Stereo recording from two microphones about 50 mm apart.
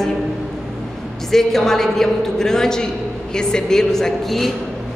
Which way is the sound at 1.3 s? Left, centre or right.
Centre.